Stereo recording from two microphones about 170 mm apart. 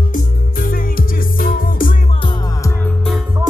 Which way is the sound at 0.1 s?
60° left (ahead or behind).